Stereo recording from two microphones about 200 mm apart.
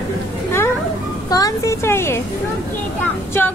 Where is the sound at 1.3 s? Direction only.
15° left (ahead or behind).